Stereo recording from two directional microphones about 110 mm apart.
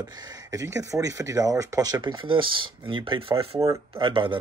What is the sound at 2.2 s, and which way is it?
Speech, 50° right (ahead or behind).